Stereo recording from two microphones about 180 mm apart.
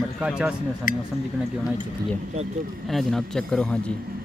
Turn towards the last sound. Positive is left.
turn(degrees=5)  # may be behind; listen again after turning